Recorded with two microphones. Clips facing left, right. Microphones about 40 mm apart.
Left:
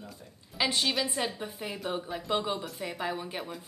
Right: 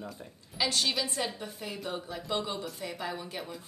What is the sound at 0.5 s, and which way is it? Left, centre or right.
A woman's voice, centre.